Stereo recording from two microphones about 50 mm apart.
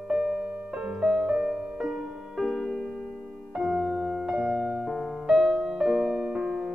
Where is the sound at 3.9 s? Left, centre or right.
Centre.